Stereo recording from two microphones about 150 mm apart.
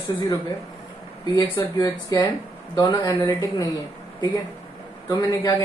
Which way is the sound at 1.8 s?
20° left (ahead or behind).